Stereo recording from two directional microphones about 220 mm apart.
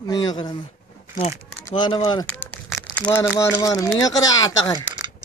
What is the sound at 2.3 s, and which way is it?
Speech, 10° left (ahead or behind).